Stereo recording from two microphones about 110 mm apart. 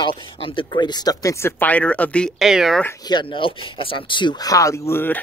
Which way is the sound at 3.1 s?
45° left (ahead or behind).